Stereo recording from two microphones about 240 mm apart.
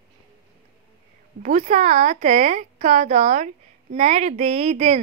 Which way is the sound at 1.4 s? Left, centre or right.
Right.